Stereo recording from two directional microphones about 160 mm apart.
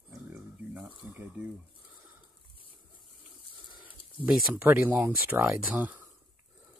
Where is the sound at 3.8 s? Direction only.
5° right (ahead or behind).